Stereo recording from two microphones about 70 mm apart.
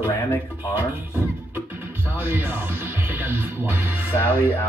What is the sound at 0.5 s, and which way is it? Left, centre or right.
Speech, right.